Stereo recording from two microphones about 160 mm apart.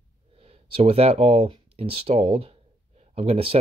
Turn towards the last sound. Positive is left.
turn(degrees=-40)  # may be behind; listen again after turning